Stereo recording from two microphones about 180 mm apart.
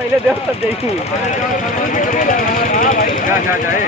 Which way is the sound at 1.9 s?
45° left (ahead or behind).